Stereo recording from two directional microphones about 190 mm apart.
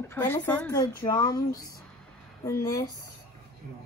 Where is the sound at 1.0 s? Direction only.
20° left (ahead or behind).